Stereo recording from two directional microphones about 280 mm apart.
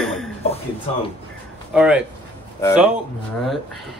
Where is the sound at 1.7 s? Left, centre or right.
Centre.